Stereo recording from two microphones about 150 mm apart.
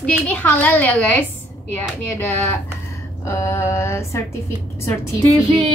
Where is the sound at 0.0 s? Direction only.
10° left (ahead or behind).